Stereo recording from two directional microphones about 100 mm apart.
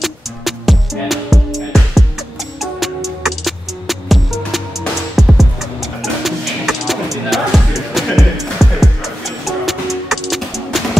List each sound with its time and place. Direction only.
0.0 s music: centre (ahead or behind)